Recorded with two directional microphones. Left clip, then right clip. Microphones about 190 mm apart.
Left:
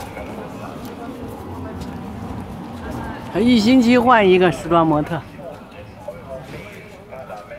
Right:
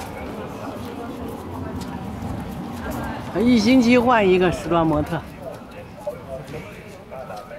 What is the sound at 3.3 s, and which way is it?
Speech, 20° left (ahead or behind).